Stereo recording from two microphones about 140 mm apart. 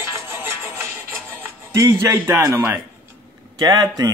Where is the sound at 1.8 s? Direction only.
20° right (ahead or behind).